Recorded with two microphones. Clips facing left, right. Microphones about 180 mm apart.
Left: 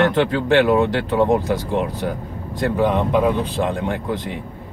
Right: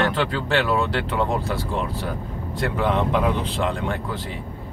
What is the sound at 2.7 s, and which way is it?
Speech, 15° left (ahead or behind).